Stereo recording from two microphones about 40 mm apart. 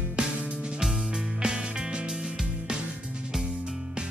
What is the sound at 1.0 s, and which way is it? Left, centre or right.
Music, centre.